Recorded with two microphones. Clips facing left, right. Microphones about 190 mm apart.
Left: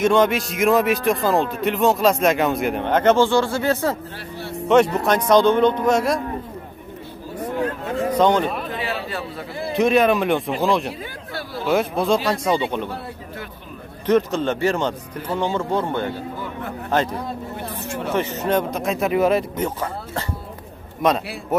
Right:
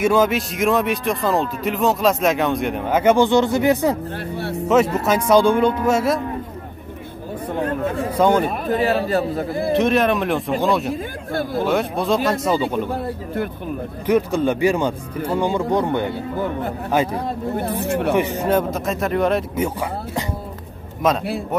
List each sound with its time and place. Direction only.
0.0 s speech: 5° right (ahead or behind)
4.6 s speech: 5° right (ahead or behind)
7.4 s a sound: 55° right (ahead or behind)
8.1 s speech: 10° right (ahead or behind)
8.5 s speech: 45° right (ahead or behind)
9.8 s speech: centre (ahead or behind)
10.9 s speech: 50° right (ahead or behind)
11.6 s speech: centre (ahead or behind)
12.9 s speech: 55° right (ahead or behind)
14.0 s speech: 10° right (ahead or behind)
17.6 s speech: 60° right (ahead or behind)
18.3 s speech: 10° right (ahead or behind)
19.5 s speech: 10° right (ahead or behind)